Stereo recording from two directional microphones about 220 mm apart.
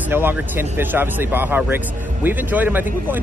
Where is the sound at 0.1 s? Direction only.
10° right (ahead or behind).